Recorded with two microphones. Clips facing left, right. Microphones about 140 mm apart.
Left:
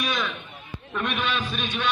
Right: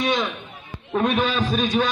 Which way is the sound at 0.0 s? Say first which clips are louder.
Right 6 dB; 25° right (ahead or behind).